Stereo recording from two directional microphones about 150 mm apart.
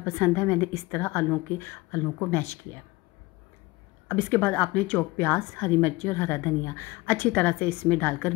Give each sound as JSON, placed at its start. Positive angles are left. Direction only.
{"t": 0.0, "sound": "a woman's voice", "side_deg": 20}
{"t": 4.1, "sound": "a woman's voice", "side_deg": 15}